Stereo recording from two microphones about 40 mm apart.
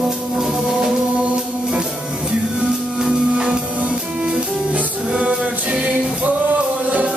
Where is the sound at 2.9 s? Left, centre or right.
Right.